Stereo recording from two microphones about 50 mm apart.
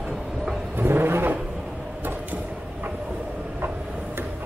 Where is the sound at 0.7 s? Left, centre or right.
Right.